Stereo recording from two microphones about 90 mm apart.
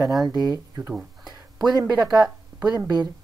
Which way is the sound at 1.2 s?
50° right (ahead or behind).